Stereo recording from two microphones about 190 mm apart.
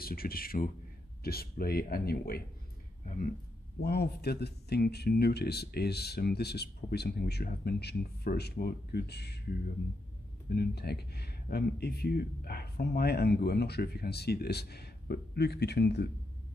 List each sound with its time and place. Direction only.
0.0 s speech: 50° left (ahead or behind)
3.8 s speech: 60° left (ahead or behind)
10.5 s speech: 60° left (ahead or behind)